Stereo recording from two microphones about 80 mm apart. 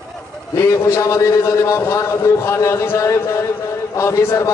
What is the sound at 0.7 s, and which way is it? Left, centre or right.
A man's voice, left.